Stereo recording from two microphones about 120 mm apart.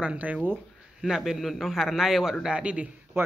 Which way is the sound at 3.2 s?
20° right (ahead or behind).